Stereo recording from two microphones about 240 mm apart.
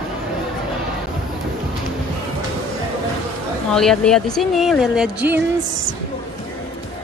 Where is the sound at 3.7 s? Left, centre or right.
Centre.